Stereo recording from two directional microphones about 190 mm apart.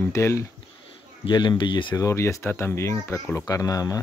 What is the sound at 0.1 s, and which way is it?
Speech, 15° left (ahead or behind).